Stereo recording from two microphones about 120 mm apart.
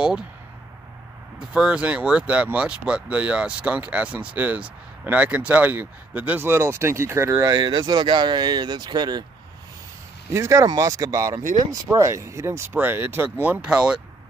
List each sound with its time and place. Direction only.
1.5 s speech: 10° right (ahead or behind)
7.5 s speech: 35° right (ahead or behind)
10.3 s speech: 25° right (ahead or behind); by 13.9 s 10° right (ahead or behind)